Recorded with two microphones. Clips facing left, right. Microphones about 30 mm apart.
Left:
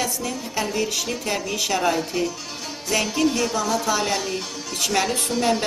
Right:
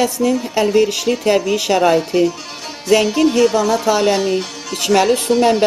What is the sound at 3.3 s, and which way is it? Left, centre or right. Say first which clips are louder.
Music: right 9 dB; right.